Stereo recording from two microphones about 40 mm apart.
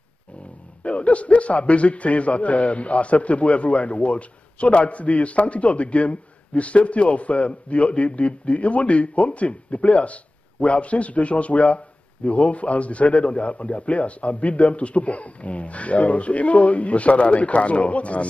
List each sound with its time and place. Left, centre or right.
0.8 s a man's voice: left